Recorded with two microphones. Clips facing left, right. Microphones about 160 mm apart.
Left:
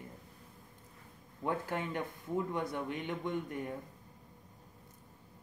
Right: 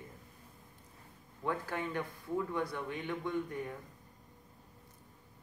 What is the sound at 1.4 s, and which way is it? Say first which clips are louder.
A man's voice: left 1 dB; 20° left (ahead or behind).